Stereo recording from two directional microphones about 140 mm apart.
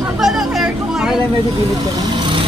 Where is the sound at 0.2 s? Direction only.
Centre (ahead or behind).